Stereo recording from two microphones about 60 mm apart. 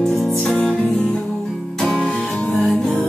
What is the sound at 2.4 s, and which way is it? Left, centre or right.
Music, left.